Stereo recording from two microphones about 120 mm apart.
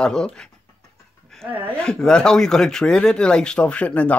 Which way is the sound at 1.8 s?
5° left (ahead or behind).